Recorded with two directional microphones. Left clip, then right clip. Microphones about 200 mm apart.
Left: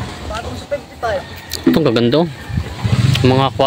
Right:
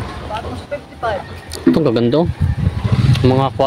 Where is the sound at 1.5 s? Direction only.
5° left (ahead or behind).